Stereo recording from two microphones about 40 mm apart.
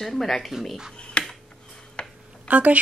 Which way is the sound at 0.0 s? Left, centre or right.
Centre.